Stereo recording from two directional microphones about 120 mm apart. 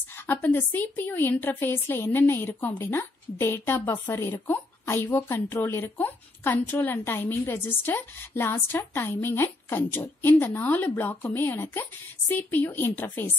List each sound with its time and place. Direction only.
0.3 s a woman's voice: 15° left (ahead or behind)